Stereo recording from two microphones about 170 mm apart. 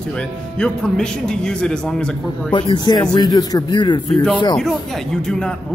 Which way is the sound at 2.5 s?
25° left (ahead or behind).